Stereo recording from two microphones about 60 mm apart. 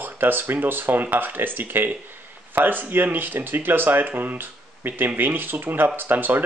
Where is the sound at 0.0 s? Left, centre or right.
Right.